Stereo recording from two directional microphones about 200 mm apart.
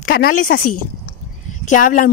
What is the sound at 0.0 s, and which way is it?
Speech, 45° left (ahead or behind).